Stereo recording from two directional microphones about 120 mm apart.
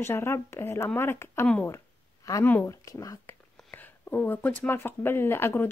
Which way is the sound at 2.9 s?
30° left (ahead or behind).